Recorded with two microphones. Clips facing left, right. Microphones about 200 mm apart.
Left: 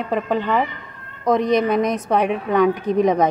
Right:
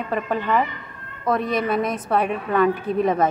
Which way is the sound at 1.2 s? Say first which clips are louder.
Left 5 dB; 15° left (ahead or behind).